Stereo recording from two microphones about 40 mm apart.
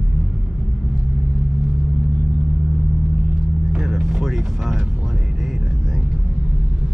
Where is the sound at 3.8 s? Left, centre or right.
Centre.